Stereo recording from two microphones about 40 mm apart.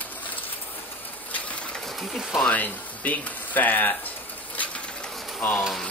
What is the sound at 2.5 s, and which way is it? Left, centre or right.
Speech, left.